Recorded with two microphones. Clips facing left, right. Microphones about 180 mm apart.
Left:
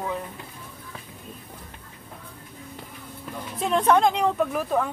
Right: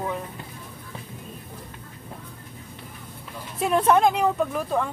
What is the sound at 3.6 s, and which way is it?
Speech, 5° right (ahead or behind).